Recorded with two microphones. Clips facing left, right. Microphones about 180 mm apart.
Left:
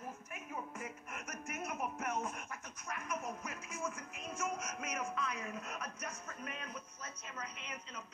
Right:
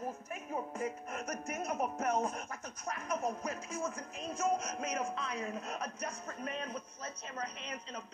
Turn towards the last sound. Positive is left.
turn(degrees=-35)  # may be behind; listen again after turning